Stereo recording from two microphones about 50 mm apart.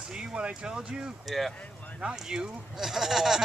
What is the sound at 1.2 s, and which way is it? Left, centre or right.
Speech, centre.